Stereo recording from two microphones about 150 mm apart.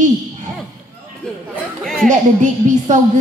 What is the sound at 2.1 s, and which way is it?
A woman's voice, 55° right (ahead or behind).